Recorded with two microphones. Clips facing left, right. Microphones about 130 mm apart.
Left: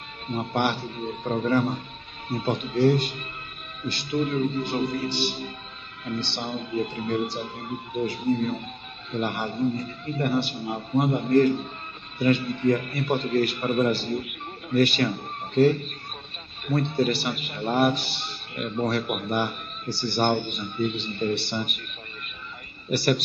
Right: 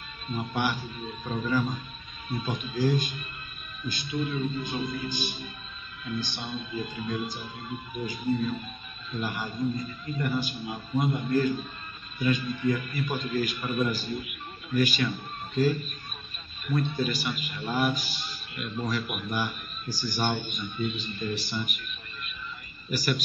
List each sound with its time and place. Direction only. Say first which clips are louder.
0.3 s a man's voice: left 4 dB; 65° left (ahead or behind)
22.8 s a man's voice: left 6 dB; 65° left (ahead or behind)